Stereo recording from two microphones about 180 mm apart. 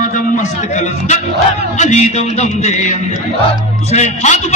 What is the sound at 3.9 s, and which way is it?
Speech, 40° left (ahead or behind).